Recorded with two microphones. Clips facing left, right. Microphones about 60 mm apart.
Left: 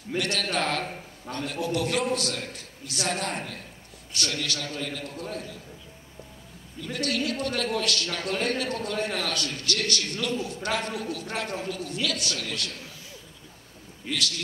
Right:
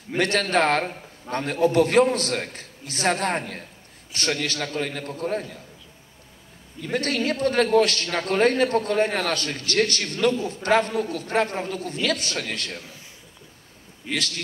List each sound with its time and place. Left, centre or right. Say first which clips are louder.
0.2 s a man's voice: right 8 dB; right
6.8 s a man's voice: right 4 dB; right
14.1 s a man's voice: right 2 dB; right